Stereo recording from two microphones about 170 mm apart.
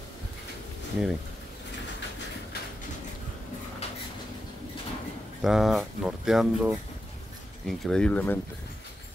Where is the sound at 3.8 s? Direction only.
40° left (ahead or behind).